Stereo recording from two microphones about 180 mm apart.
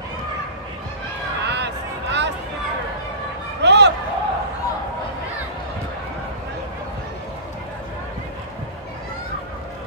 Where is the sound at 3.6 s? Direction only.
75° right (ahead or behind).